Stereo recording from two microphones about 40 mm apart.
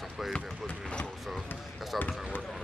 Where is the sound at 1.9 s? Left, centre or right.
Left.